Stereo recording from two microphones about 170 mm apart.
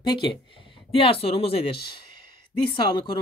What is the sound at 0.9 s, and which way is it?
Speech, 35° left (ahead or behind).